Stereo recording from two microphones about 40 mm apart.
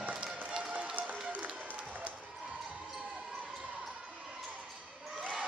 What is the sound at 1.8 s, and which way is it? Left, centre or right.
Basketball bounce, right.